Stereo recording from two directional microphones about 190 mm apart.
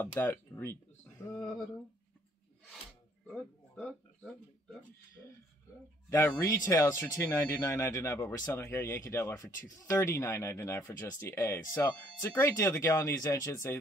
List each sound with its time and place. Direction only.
0.0 s speech: 10° left (ahead or behind)
3.3 s speech: 5° left (ahead or behind)
6.0 s speech: 15° left (ahead or behind)